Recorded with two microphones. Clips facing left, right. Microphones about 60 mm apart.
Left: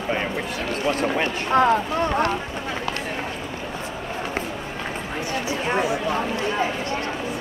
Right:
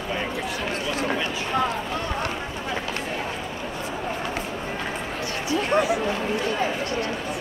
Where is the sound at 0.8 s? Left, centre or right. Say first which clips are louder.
Left 6 dB; left.